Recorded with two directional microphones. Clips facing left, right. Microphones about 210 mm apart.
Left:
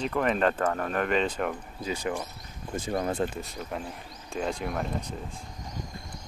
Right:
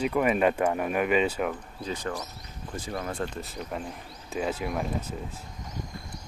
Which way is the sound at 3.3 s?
Centre (ahead or behind).